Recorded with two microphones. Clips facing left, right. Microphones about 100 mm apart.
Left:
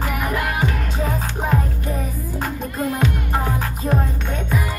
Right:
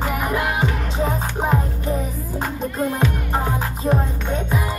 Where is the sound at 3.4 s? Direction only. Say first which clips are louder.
Right 1 dB; 25° right (ahead or behind).